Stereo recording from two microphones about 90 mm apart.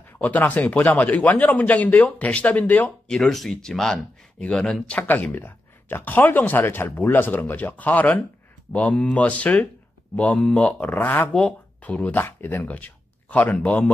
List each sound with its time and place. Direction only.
0.2 s speech: 20° left (ahead or behind)
3.2 s speech: 5° left (ahead or behind)
4.9 s speech: 20° left (ahead or behind)